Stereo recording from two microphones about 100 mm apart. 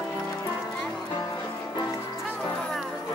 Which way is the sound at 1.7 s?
30° left (ahead or behind).